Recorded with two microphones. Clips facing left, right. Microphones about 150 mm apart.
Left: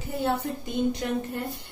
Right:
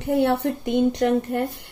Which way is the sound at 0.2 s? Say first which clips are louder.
Right 7 dB; 70° right (ahead or behind).